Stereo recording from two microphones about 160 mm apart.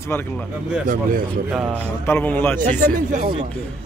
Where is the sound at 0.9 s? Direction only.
55° right (ahead or behind).